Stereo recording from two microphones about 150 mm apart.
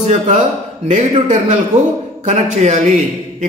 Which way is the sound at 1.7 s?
55° right (ahead or behind).